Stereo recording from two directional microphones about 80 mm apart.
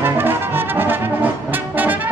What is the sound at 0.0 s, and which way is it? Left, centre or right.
Brass instrument, right.